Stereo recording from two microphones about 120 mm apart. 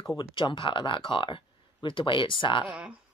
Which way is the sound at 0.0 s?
40° left (ahead or behind).